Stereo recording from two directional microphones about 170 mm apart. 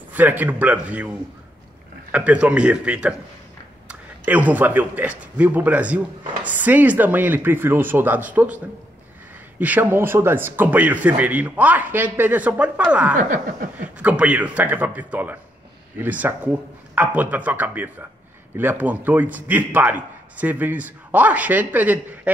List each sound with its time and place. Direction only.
0.1 s a man's voice: 10° right (ahead or behind)
2.1 s a man's voice: 10° right (ahead or behind)
9.6 s a man's voice: 10° right (ahead or behind)
13.1 s speech: 50° right (ahead or behind)
13.9 s a man's voice: 10° right (ahead or behind)